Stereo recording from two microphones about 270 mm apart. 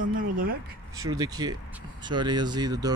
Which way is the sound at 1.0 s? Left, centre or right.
Centre.